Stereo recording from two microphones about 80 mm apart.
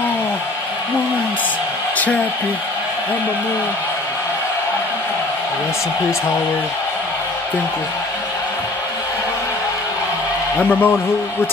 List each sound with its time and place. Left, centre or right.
10.6 s a man's voice: left